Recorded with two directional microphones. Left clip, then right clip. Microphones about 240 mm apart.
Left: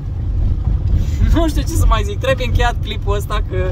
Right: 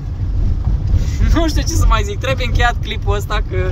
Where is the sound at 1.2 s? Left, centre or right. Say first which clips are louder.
Even; centre.